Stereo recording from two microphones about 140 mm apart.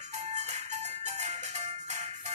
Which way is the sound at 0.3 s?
55° right (ahead or behind).